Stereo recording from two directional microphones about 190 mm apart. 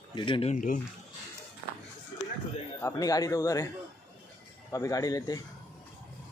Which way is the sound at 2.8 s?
20° left (ahead or behind).